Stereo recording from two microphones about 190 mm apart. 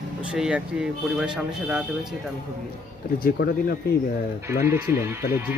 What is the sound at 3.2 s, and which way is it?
Speech, 50° left (ahead or behind).